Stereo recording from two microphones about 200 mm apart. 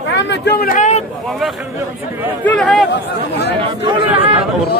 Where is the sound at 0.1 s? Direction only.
55° left (ahead or behind); by 1.0 s 40° left (ahead or behind).